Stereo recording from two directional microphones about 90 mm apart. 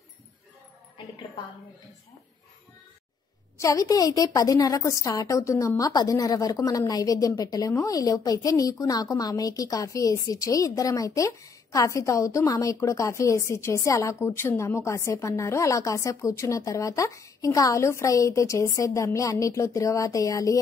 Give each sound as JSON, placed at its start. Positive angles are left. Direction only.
{"t": 3.5, "sound": "a woman's voice", "side_deg": 40}